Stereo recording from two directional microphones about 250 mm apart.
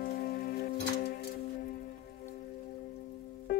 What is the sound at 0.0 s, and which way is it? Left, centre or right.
Music, left.